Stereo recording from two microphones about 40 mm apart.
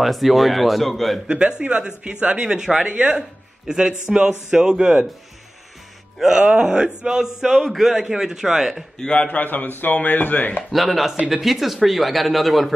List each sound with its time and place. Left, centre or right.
0.0 s speech: centre
1.2 s speech: right
2.4 s speech: centre
2.9 s speech: right
3.2 s a man's voice: centre
6.1 s speech: centre
6.5 s speech: right
7.6 s speech: centre
8.0 s speech: centre
9.2 s speech: left
10.7 s speech: centre